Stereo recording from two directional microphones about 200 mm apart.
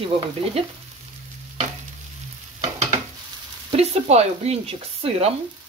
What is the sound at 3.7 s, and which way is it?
Speech, 30° right (ahead or behind).